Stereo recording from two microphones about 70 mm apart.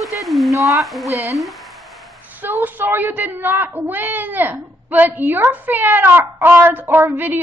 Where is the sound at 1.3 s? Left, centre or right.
Centre.